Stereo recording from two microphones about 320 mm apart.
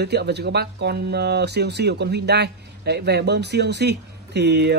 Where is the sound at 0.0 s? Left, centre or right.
Right.